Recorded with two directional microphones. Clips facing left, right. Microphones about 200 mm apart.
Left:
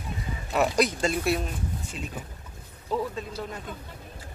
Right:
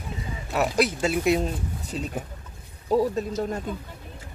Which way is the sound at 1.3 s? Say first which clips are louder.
Right 4 dB; 30° right (ahead or behind).